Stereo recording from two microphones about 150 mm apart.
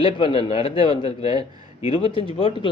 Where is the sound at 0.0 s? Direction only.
35° left (ahead or behind).